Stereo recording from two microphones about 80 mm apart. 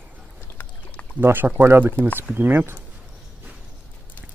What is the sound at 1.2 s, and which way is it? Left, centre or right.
Speech, right.